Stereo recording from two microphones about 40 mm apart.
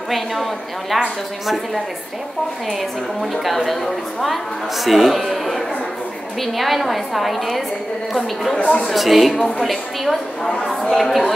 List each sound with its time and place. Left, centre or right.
0.1 s a woman's voice: centre
3.2 s a woman's voice: centre
8.5 s speech: left
8.8 s a woman's voice: centre
10.4 s speech: centre